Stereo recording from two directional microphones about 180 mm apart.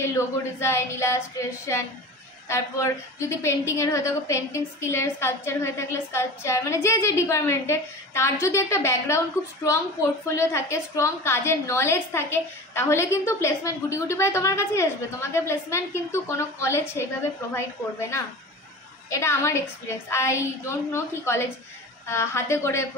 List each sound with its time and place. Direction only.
0.0 s a woman's voice: 15° left (ahead or behind)
10.2 s a woman's voice: 15° left (ahead or behind)
19.0 s a woman's voice: 15° left (ahead or behind)